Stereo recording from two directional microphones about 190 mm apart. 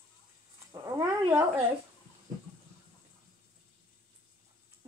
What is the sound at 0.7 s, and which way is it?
Speech, 15° right (ahead or behind).